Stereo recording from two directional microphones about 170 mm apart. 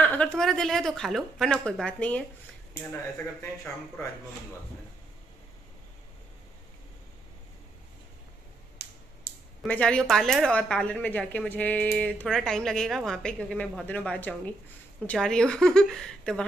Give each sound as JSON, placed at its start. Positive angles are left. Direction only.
{"t": 0.0, "sound": "speech", "side_deg": 5}
{"t": 9.3, "sound": "a sound", "side_deg": 70}
{"t": 9.7, "sound": "speech", "side_deg": 5}